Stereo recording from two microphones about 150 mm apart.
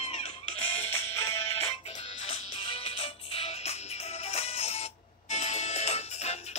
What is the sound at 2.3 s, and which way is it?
Music, 40° left (ahead or behind).